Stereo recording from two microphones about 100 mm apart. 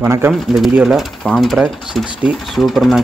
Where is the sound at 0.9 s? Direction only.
Centre (ahead or behind).